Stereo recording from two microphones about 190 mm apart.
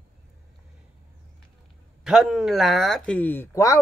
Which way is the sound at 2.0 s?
5° right (ahead or behind).